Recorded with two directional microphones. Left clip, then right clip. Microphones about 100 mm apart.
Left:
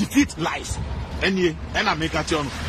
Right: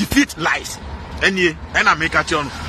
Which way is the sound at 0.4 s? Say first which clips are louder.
Right 7 dB; 20° left (ahead or behind).